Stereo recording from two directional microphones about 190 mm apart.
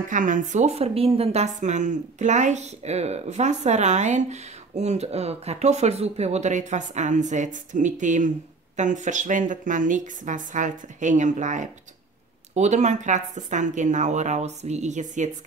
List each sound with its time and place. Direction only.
0.1 s a woman's voice: 45° right (ahead or behind)